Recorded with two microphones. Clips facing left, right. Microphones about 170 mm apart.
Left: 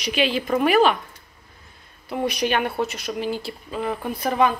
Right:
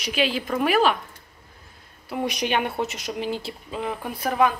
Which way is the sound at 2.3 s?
20° right (ahead or behind).